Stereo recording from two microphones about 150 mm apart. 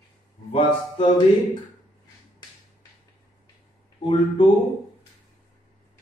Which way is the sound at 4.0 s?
35° left (ahead or behind).